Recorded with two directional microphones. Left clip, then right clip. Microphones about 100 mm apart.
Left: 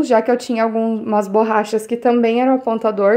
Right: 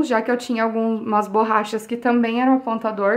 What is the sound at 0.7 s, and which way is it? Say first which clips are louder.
Speech: left 3 dB; 20° left (ahead or behind).